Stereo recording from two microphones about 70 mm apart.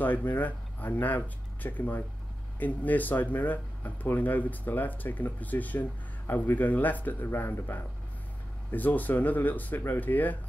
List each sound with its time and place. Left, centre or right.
0.0 s speech: left